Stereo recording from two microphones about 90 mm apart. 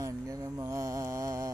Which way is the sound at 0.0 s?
40° right (ahead or behind).